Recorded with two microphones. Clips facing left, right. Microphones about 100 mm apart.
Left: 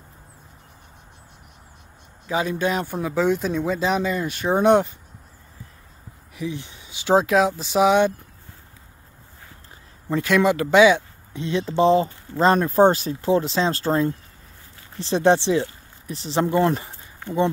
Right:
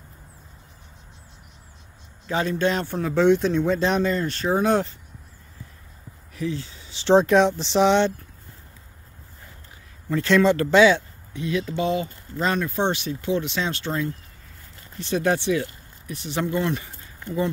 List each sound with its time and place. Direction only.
2.2 s speech: 10° left (ahead or behind)
6.3 s speech: 15° left (ahead or behind)
10.2 s speech: 10° left (ahead or behind)
11.3 s speech: 30° left (ahead or behind)